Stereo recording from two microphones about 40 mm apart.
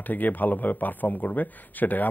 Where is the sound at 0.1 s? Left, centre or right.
Left.